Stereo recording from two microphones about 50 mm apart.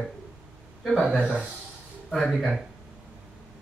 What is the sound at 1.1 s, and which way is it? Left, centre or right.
Speech, right.